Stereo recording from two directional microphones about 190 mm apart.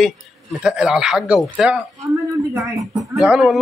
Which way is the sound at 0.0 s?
Centre (ahead or behind).